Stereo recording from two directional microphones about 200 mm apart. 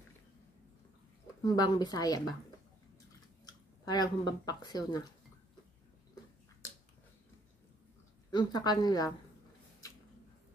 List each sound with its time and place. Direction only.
1.4 s speech: 20° left (ahead or behind)
3.8 s speech: 20° left (ahead or behind)
8.3 s speech: 20° left (ahead or behind)